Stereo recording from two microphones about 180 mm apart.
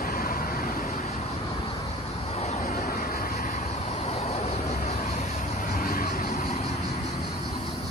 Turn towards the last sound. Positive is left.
turn(degrees=40)  # may be behind; listen again after turning